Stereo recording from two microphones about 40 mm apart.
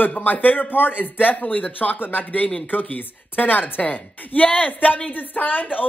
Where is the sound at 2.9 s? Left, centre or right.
Left.